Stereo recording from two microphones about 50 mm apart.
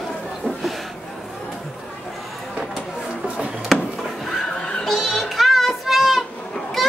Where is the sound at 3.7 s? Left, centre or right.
Centre.